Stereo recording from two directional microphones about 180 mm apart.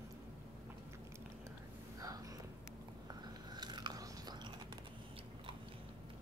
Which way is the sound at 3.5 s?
25° right (ahead or behind).